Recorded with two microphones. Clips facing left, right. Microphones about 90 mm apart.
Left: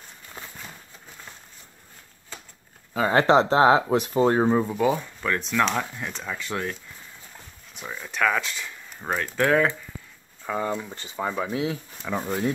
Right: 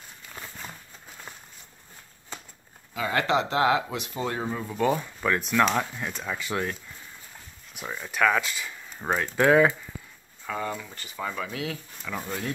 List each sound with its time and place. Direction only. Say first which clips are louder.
0.4 s a sound: left 1 dB; 25° left (ahead or behind)
2.9 s speech: left 6 dB; 35° left (ahead or behind)
4.6 s speech: left 2 dB; 5° left (ahead or behind)
10.4 s speech: left 4 dB; 20° left (ahead or behind)